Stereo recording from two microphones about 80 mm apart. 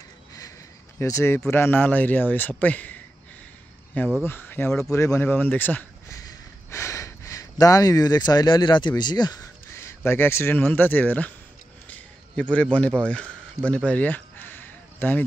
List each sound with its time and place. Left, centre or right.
0.9 s speech: left; by 3.0 s centre
4.2 s speech: left
4.9 s speech: left
5.2 s speech: left
6.0 s a sound: left
9.4 s speech: left
11.9 s a sound: centre